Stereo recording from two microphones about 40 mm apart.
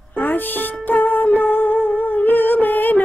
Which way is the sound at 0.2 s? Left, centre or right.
Left.